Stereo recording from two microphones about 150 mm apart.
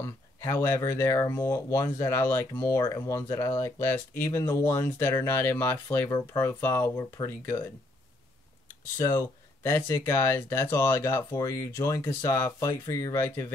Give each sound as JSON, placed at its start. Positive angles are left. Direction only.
{"t": 0.0, "sound": "speech", "side_deg": 20}
{"t": 8.9, "sound": "speech", "side_deg": 20}